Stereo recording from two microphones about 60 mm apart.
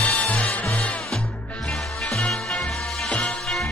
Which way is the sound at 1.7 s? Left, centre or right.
Centre.